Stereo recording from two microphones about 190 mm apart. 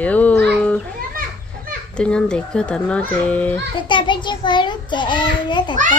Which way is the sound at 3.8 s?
25° left (ahead or behind).